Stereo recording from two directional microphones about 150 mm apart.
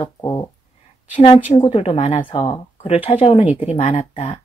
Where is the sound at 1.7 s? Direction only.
40° left (ahead or behind).